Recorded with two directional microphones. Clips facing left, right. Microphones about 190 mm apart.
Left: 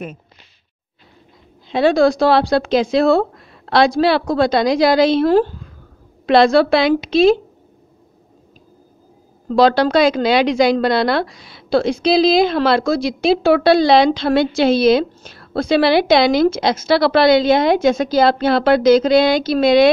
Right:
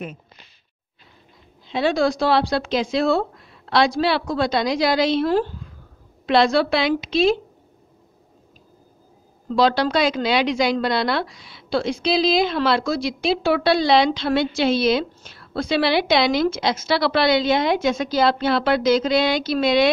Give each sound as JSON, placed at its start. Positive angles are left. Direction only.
{"t": 1.7, "sound": "a woman's voice", "side_deg": 45}
{"t": 9.6, "sound": "a woman's voice", "side_deg": 45}